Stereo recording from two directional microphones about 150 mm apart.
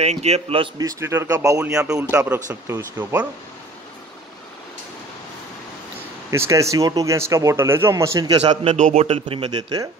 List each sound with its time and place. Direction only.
0.0 s a man's voice: 45° right (ahead or behind)
0.7 s speech: 20° right (ahead or behind)
1.8 s speech: 5° right (ahead or behind)
6.3 s speech: 20° right (ahead or behind)
8.7 s a man's voice: 50° right (ahead or behind)